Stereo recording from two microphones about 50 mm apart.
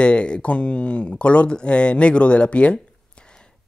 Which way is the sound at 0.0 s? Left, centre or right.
Left.